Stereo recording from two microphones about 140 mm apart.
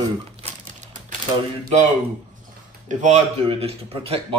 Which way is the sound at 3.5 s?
40° right (ahead or behind).